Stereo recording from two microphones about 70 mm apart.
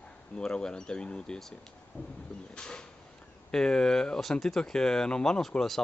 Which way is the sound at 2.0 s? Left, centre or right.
Left.